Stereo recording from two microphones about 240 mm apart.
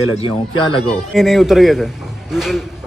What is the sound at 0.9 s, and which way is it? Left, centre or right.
A man's voice, centre.